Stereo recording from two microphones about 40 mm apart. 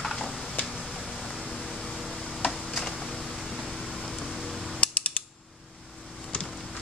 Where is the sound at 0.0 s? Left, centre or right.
Centre.